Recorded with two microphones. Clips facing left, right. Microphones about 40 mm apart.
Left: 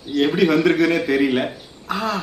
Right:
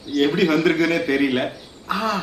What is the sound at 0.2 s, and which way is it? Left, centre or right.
A man's voice, centre.